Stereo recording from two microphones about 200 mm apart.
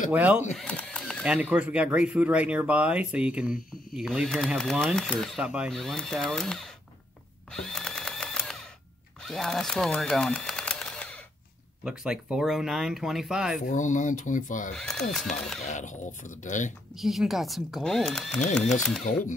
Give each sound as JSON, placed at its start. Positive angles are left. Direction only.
{"t": 0.1, "sound": "speech", "side_deg": -10}
{"t": 0.6, "sound": "a sound", "side_deg": 5}
{"t": 1.2, "sound": "speech", "side_deg": -5}
{"t": 7.5, "sound": "sewing machine", "side_deg": 5}
{"t": 9.2, "sound": "a sound", "side_deg": 0}
{"t": 11.8, "sound": "speech", "side_deg": -5}
{"t": 13.7, "sound": "speech", "side_deg": 40}
{"t": 14.7, "sound": "speech", "side_deg": 0}
{"t": 15.6, "sound": "speech", "side_deg": 35}
{"t": 16.9, "sound": "speech", "side_deg": 0}